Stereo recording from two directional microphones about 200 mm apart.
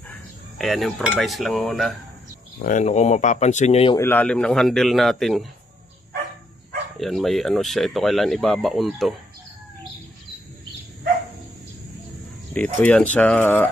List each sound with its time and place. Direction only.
0.1 s cutlery: centre (ahead or behind)
2.6 s speech: 35° left (ahead or behind)
3.9 s speech: 10° left (ahead or behind)
7.0 s speech: centre (ahead or behind)
12.5 s speech: 5° left (ahead or behind)